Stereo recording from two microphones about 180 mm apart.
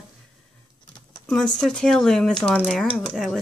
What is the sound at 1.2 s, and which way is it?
Speech, centre (ahead or behind).